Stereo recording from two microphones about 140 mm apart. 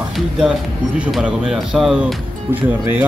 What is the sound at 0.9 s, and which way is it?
Speech, 5° right (ahead or behind).